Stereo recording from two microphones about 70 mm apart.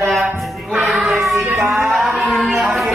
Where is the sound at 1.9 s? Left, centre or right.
Centre.